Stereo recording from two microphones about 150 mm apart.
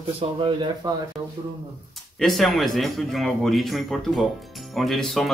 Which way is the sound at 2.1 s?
Centre (ahead or behind).